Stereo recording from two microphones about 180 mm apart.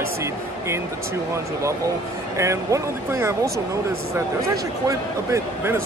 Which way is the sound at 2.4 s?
15° right (ahead or behind).